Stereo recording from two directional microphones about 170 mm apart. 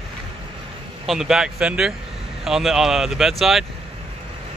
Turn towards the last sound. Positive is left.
turn(degrees=0)  # may be behind; listen again after turning